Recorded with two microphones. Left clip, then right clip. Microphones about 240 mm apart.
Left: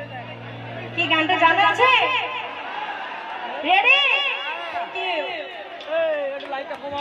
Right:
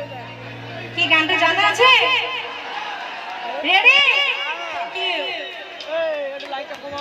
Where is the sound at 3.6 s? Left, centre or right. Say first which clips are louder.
Right 3 dB; right.